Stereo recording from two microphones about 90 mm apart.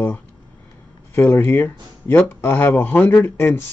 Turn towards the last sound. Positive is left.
turn(degrees=25)  # may be behind; listen again after turning